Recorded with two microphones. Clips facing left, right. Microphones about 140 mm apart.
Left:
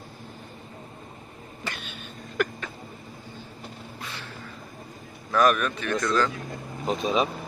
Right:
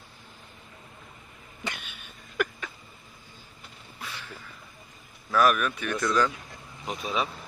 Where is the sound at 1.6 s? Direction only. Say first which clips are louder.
Left 1 dB; 15° right (ahead or behind).